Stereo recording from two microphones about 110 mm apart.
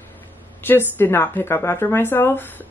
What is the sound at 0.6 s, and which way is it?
A woman's voice, 20° left (ahead or behind).